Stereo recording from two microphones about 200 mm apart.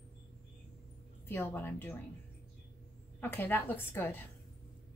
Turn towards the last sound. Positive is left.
turn(degrees=10)  # may be behind; listen again after turning